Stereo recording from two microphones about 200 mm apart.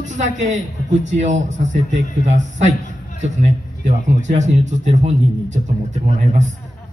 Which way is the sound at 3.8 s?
35° right (ahead or behind).